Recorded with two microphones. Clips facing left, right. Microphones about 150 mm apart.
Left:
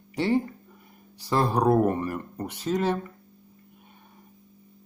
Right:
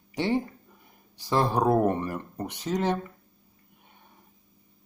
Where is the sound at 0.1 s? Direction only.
20° right (ahead or behind).